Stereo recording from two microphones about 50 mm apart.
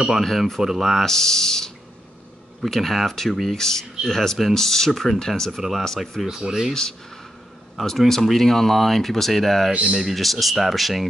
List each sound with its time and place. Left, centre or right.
0.6 s speech: centre
1.0 s speech: centre
5.6 s speech: centre
6.2 s speech: centre
6.7 s speech: centre
9.7 s speech: centre
9.9 s speech: centre